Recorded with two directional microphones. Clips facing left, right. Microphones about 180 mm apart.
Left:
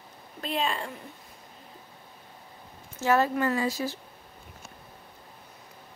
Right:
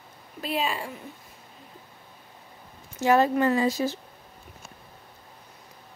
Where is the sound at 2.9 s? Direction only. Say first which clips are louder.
Right 3 dB; 15° right (ahead or behind).